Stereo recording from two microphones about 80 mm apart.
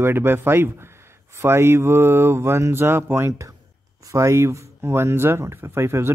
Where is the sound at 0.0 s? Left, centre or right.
Right.